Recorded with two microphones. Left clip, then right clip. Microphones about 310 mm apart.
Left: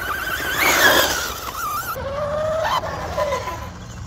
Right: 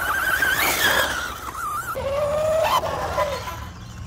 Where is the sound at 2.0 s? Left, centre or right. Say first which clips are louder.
Right 5 dB; right.